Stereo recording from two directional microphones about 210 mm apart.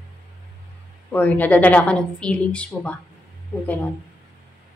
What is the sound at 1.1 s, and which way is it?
A woman's voice, 10° left (ahead or behind).